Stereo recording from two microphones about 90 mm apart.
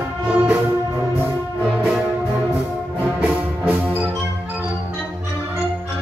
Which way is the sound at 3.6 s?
20° right (ahead or behind).